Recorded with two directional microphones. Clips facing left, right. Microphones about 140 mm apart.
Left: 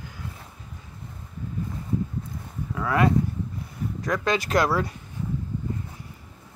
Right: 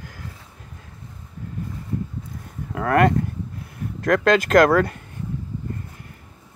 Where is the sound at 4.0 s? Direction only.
70° right (ahead or behind).